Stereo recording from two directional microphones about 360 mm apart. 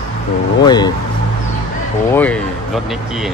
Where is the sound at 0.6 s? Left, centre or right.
Centre.